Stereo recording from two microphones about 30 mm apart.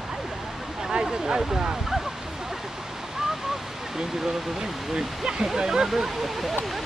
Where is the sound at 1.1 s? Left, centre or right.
Centre.